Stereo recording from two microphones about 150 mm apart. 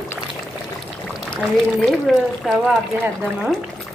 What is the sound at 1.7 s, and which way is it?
Speech, centre (ahead or behind).